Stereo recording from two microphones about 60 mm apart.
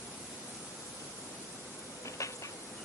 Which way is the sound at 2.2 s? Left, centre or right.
Left.